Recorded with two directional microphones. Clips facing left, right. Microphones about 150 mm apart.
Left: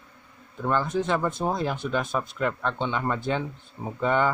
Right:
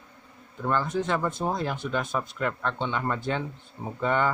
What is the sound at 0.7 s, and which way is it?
Speech, 10° left (ahead or behind).